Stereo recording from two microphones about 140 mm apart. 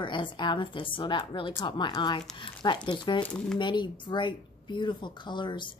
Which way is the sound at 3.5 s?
35° left (ahead or behind).